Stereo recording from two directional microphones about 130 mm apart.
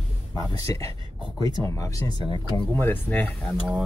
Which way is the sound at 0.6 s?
25° left (ahead or behind).